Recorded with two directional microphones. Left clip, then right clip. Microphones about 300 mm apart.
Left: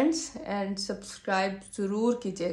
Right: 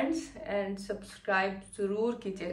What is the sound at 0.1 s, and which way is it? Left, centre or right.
A woman's voice, centre.